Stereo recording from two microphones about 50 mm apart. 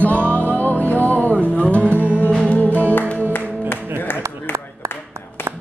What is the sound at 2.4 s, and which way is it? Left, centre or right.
Music, left.